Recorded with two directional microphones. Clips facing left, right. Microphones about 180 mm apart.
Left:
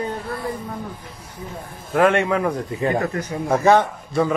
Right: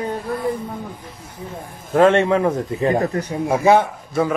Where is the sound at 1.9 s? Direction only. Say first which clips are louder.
Right 3 dB; 25° right (ahead or behind).